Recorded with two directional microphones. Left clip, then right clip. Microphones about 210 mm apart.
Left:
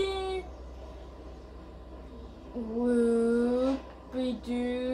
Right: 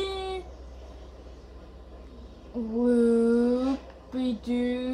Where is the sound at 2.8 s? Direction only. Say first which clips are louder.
Right 3 dB; 30° right (ahead or behind).